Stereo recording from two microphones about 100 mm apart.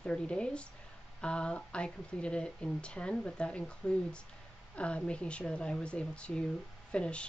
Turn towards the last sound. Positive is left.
turn(degrees=10)  # may be behind; listen again after turning